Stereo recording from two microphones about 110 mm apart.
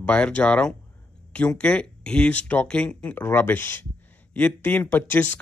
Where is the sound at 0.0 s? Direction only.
10° left (ahead or behind).